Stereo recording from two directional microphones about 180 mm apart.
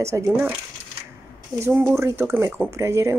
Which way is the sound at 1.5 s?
15° right (ahead or behind).